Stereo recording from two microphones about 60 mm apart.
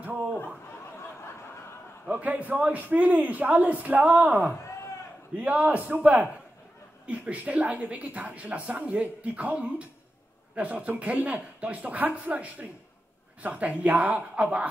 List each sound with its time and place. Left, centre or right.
0.0 s snicker: right
2.0 s a woman's voice: right